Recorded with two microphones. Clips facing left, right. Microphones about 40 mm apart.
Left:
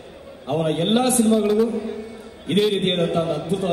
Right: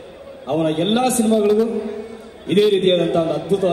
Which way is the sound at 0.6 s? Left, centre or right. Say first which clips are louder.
Right 1 dB; right.